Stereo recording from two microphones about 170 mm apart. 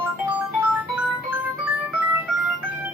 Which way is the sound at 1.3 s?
10° right (ahead or behind).